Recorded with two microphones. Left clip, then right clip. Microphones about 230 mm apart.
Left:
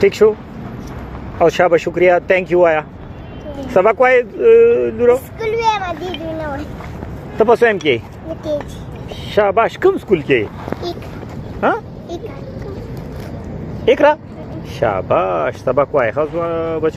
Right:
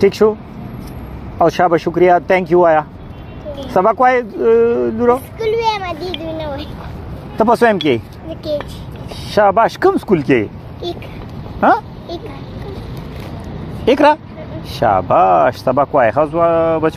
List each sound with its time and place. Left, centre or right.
0.2 s speech: right
1.4 s speech: right
5.4 s a sound: right
7.3 s speech: right
9.3 s speech: right
13.8 s speech: right